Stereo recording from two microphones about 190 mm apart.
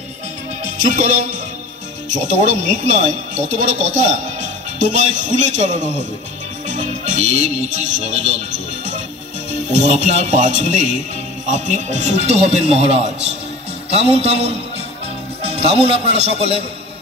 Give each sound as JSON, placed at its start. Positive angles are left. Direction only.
{"t": 0.8, "sound": "speech", "side_deg": -40}
{"t": 6.7, "sound": "music", "side_deg": -40}
{"t": 9.8, "sound": "speech", "side_deg": -35}